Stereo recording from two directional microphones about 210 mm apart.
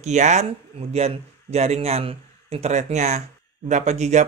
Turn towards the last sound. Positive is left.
turn(degrees=-35)  # may be behind; listen again after turning